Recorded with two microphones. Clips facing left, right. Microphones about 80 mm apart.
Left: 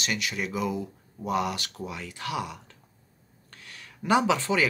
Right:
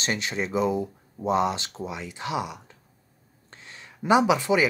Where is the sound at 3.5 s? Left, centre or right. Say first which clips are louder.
Right 2 dB; right.